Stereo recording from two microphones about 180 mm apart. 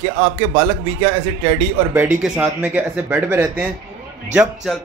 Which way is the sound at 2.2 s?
5° right (ahead or behind).